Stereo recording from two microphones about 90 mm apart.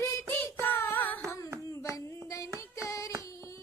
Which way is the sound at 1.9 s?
35° left (ahead or behind).